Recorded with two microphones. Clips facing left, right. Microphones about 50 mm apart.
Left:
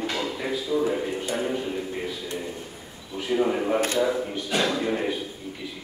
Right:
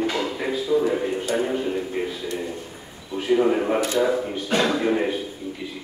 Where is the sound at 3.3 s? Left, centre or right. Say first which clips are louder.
Right 4 dB; centre.